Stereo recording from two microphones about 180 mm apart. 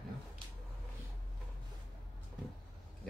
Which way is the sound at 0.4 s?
30° right (ahead or behind).